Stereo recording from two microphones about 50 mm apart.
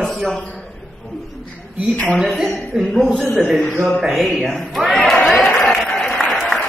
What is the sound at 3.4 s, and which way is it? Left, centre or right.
Speech, centre.